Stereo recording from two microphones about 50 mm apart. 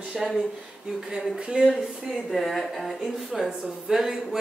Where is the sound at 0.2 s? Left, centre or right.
Centre.